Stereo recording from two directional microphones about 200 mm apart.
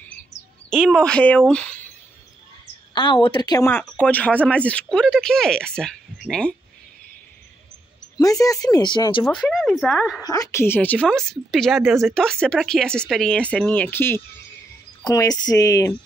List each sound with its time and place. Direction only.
0.7 s a woman's voice: 5° left (ahead or behind)
2.9 s speech: 25° left (ahead or behind); by 6.5 s centre (ahead or behind)
8.2 s speech: 15° left (ahead or behind)
9.2 s a woman's voice: centre (ahead or behind)
10.2 s a woman's voice: 20° left (ahead or behind)